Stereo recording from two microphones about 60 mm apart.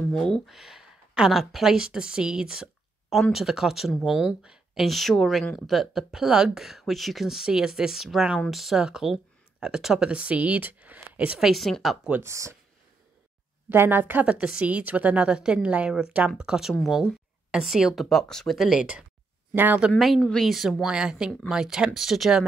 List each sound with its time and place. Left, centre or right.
0.1 s speech: centre
0.5 s speech: centre
4.4 s a sound: centre
4.8 s speech: centre
10.0 s a woman's voice: centre
11.3 s speech: centre
12.2 s speech: right
13.7 s speech: right
14.2 s a woman's voice: centre
18.0 s speech: centre
18.6 s speech: centre
19.5 s speech: right
20.3 s speech: centre
20.8 s speech: centre